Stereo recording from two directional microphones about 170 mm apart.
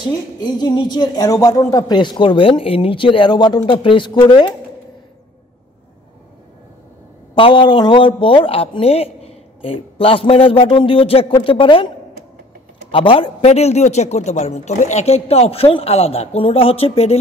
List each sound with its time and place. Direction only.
0.0 s speech: 25° left (ahead or behind)
7.3 s a man's voice: 30° left (ahead or behind)
12.9 s a man's voice: 30° left (ahead or behind)